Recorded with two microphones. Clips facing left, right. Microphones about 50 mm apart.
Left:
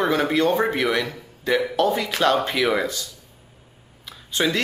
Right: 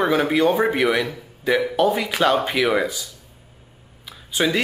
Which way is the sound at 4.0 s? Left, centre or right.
Centre.